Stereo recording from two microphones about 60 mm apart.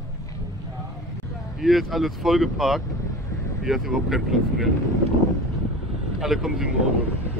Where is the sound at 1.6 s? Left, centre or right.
Centre.